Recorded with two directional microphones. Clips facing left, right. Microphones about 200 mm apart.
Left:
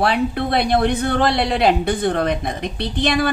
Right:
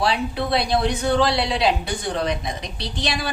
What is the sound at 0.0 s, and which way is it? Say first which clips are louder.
Speech: left 4 dB; 55° left (ahead or behind).